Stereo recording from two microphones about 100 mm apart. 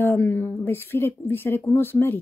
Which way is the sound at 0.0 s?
25° left (ahead or behind).